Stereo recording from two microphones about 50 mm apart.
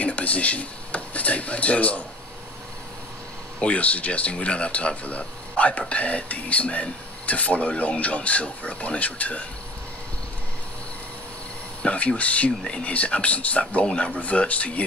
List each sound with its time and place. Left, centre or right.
0.0 s speech: left
3.5 s speech: left
11.8 s speech: left